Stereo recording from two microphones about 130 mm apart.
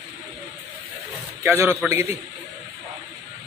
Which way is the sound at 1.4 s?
15° right (ahead or behind).